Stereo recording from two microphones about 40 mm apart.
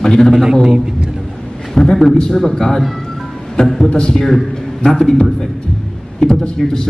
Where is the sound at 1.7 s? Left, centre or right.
Centre.